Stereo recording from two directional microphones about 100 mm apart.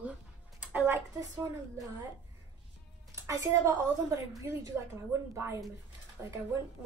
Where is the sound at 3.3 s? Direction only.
30° right (ahead or behind).